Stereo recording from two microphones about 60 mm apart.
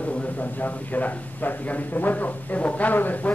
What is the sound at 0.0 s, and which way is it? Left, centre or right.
Speech, left.